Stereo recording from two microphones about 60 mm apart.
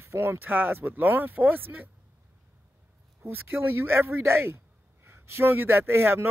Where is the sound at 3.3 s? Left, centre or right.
Right.